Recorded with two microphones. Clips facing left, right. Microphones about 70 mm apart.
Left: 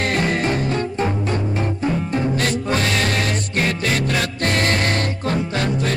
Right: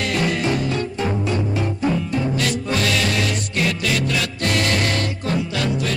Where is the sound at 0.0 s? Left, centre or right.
Left.